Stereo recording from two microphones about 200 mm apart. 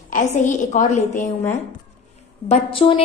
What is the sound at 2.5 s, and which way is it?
Speech, 25° left (ahead or behind).